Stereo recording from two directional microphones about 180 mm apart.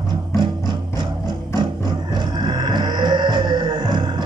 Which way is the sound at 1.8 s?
25° right (ahead or behind).